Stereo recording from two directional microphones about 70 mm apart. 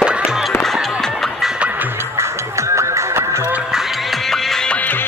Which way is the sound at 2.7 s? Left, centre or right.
Right.